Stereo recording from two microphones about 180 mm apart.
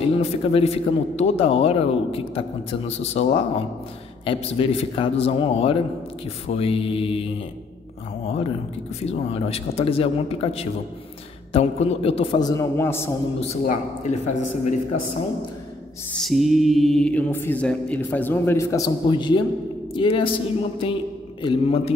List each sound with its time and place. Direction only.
0.2 s speech: 30° left (ahead or behind)
9.0 s speech: 35° left (ahead or behind); by 13.1 s 15° left (ahead or behind)
14.0 s speech: 40° left (ahead or behind)
16.2 s a woman's voice: centre (ahead or behind); by 20.3 s 30° left (ahead or behind)
20.8 s a sound: 30° left (ahead or behind)